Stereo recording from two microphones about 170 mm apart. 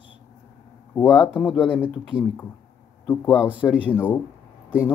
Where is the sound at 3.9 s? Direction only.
10° left (ahead or behind).